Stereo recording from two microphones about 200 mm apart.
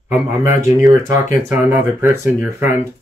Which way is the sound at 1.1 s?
10° right (ahead or behind).